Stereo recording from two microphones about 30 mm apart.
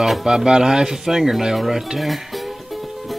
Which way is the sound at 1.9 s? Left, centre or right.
Centre.